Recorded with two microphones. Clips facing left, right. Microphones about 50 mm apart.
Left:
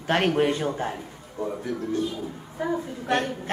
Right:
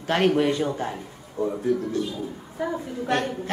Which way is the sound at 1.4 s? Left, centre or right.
Centre.